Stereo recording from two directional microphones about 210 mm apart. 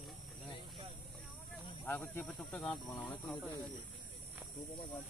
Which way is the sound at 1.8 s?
10° left (ahead or behind).